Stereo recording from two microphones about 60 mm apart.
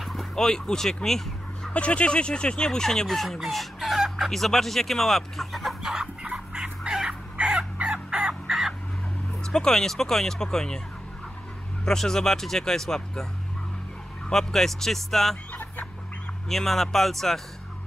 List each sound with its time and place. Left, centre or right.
0.0 s a sound: centre
0.5 s speech: centre
1.7 s speech: centre
3.3 s chicken: centre
4.3 s speech: centre
6.2 s dog: centre
7.3 s fowl: centre
8.5 s chicken: centre
9.4 s speech: centre
11.8 s speech: centre
14.3 s speech: centre
15.5 s chicken: left
16.4 s speech: centre